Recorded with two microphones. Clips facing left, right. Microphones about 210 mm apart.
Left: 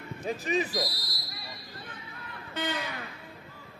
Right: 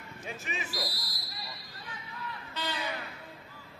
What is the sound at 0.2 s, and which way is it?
Speech, 35° left (ahead or behind).